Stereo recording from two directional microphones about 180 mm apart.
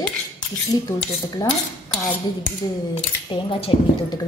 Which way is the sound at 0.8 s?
20° left (ahead or behind).